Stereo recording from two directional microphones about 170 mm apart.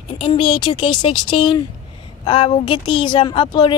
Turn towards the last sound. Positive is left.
turn(degrees=25)  # may be behind; listen again after turning